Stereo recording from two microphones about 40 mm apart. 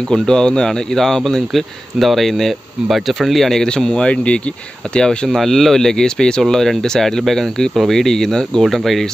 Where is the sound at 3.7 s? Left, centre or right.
Left.